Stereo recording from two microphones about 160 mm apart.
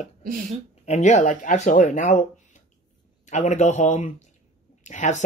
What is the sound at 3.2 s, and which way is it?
Speech, 45° left (ahead or behind).